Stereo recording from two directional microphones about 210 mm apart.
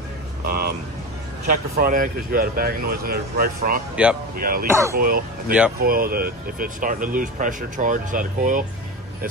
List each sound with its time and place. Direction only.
1.5 s speech: 40° right (ahead or behind)
3.9 s speech: 5° right (ahead or behind)
4.4 s speech: 45° right (ahead or behind)
4.6 s speech: 15° right (ahead or behind)
4.9 s speech: 45° right (ahead or behind)